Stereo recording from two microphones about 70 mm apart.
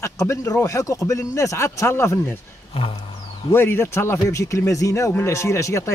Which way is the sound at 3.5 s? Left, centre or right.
Left.